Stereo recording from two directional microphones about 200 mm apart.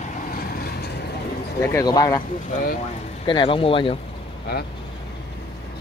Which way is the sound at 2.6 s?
45° left (ahead or behind).